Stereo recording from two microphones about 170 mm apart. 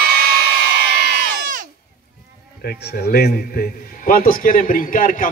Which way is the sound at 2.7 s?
70° left (ahead or behind).